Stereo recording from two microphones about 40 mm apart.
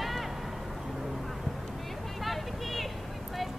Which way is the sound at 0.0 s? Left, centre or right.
Centre.